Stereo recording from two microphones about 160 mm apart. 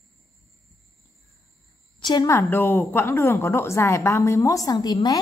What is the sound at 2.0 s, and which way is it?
A woman's voice, 25° left (ahead or behind).